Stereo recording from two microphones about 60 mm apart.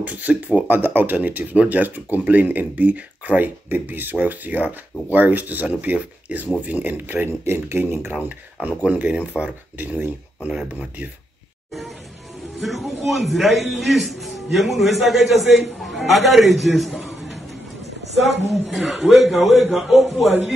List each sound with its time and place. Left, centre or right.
0.0 s speech: right
7.4 s speech: right
7.8 s speech: right
12.5 s a man's voice: centre